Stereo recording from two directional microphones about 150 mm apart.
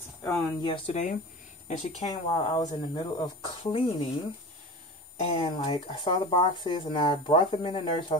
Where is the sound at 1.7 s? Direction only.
50° left (ahead or behind).